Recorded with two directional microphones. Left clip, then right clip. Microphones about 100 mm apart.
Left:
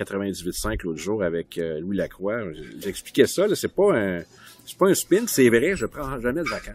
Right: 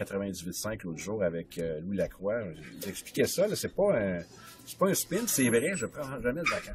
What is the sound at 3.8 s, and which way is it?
Speech, 35° left (ahead or behind).